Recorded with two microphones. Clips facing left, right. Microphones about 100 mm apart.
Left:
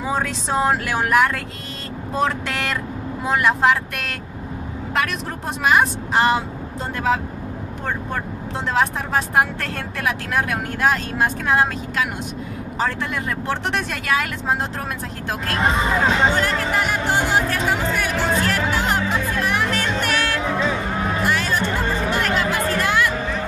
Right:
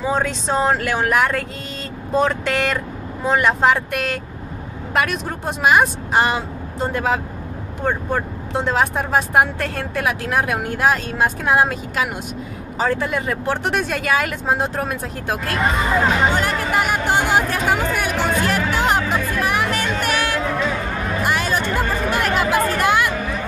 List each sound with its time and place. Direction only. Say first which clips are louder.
0.1 s speech: right 1 dB; 5° left (ahead or behind)
15.6 s speech: left 1 dB; 25° left (ahead or behind)
16.1 s speech: even; 10° right (ahead or behind)